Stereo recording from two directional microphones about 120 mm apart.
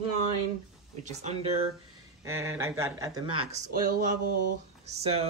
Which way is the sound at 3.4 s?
70° right (ahead or behind).